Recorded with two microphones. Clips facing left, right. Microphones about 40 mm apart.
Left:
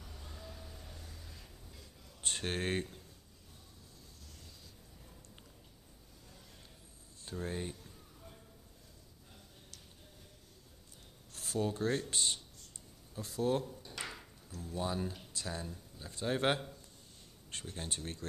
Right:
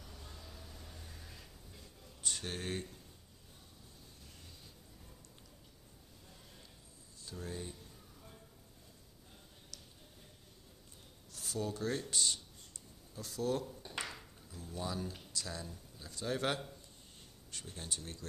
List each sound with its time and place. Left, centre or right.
0.0 s vehicle: centre
1.0 s a sound: centre
2.2 s speech: left
7.2 s speech: left
9.7 s a sound: left
11.3 s speech: left
14.0 s ping: centre
14.6 s speech: left